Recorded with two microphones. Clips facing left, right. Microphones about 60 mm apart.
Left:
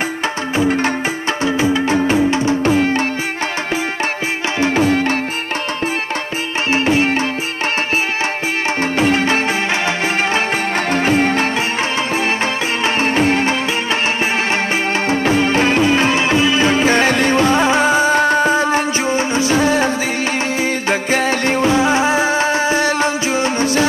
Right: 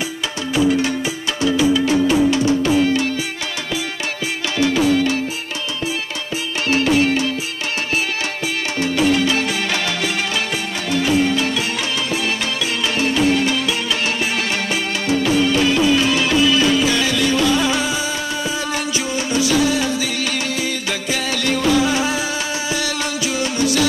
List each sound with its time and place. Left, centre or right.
1.4 s music: left
4.6 s music: left
6.7 s music: left
8.9 s music: left
12.8 s music: left
15.0 s music: left